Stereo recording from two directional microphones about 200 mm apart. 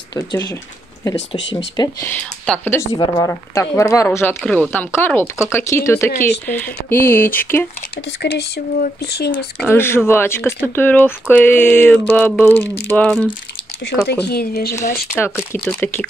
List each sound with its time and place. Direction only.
0.1 s speech: 20° left (ahead or behind)
1.8 s speech: 10° left (ahead or behind)
2.9 s speech: 25° left (ahead or behind)
8.2 s speech: 55° left (ahead or behind)
9.6 s speech: 10° left (ahead or behind)
13.8 s speech: 55° left (ahead or behind)
15.5 s speech: 10° left (ahead or behind)